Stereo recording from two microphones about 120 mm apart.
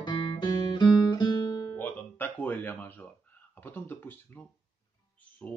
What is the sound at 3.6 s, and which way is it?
Speech, 15° left (ahead or behind).